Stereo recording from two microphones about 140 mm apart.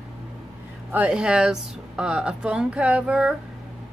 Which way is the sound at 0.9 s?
10° right (ahead or behind).